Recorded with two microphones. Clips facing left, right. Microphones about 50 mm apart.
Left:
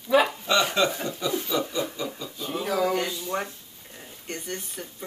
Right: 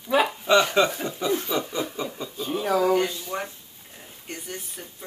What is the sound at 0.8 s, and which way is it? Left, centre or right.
Speech, centre.